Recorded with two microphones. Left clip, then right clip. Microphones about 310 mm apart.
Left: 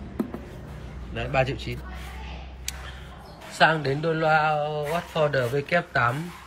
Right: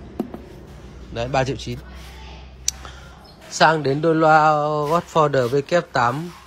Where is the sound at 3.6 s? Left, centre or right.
Centre.